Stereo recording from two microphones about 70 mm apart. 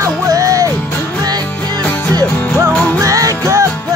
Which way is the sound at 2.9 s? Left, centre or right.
Right.